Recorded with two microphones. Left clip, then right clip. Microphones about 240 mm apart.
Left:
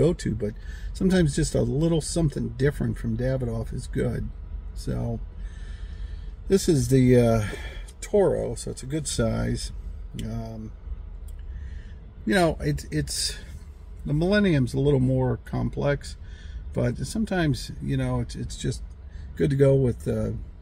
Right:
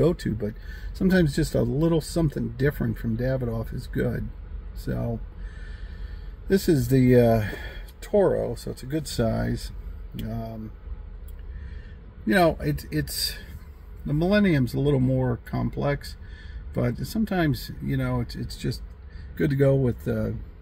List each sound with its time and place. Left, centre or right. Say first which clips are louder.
0.0 s speech: even; centre
6.5 s speech: left 1 dB; centre
12.3 s speech: right 2 dB; centre